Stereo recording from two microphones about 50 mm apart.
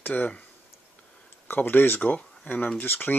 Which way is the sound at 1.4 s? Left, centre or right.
Left.